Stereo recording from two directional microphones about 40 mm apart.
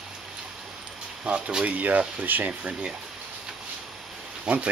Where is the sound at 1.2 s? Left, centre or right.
Right.